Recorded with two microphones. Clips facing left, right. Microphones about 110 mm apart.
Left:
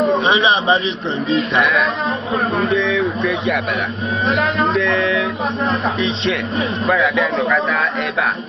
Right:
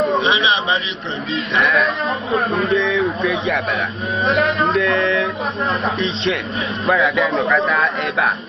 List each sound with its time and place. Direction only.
0.2 s speech: 35° left (ahead or behind)
1.6 s a man's voice: centre (ahead or behind)
4.6 s a man's voice: centre (ahead or behind)